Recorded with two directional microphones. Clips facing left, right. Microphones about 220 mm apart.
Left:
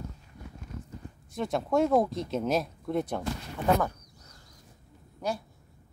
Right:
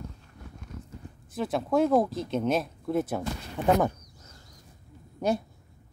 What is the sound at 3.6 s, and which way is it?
Speech, 15° right (ahead or behind).